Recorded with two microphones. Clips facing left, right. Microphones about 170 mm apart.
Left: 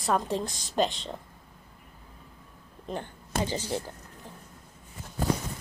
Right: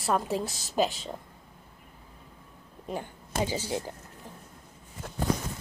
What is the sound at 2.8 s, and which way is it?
Speech, 10° right (ahead or behind).